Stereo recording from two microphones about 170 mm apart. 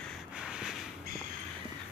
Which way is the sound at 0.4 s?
5° right (ahead or behind).